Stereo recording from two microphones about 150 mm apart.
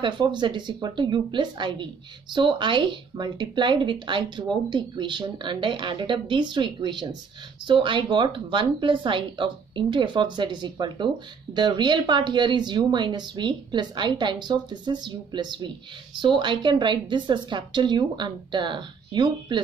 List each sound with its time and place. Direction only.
0.0 s a woman's voice: 30° right (ahead or behind)